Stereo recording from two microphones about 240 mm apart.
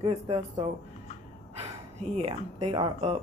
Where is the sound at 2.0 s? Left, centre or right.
Right.